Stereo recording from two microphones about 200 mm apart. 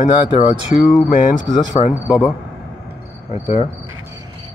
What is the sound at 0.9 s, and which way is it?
Speech, 20° left (ahead or behind).